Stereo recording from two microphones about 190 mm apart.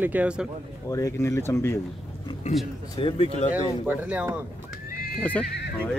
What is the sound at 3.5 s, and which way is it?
Speech, 10° right (ahead or behind).